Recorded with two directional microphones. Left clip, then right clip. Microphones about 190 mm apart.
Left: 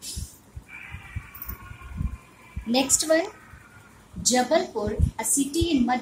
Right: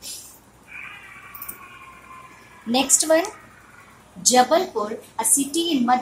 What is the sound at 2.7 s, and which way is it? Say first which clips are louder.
A woman's voice: right 3 dB; 20° left (ahead or behind).